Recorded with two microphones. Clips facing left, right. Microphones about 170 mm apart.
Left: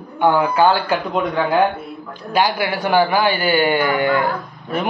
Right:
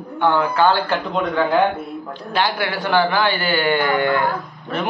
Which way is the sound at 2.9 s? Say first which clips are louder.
Left 2 dB; 10° left (ahead or behind).